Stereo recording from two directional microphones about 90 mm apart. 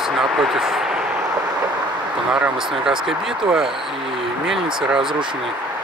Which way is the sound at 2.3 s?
5° right (ahead or behind).